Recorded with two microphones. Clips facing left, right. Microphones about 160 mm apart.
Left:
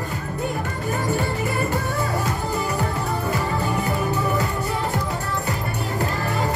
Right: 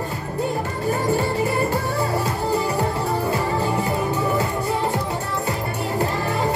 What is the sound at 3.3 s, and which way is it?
Music, 30° right (ahead or behind).